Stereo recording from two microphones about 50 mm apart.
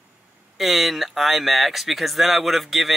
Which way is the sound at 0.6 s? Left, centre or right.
Centre.